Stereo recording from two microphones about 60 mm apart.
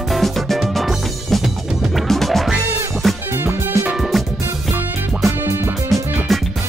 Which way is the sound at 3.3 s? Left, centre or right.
Right.